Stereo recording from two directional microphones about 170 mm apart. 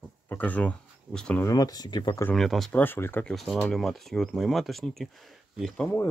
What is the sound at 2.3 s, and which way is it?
Speech, centre (ahead or behind).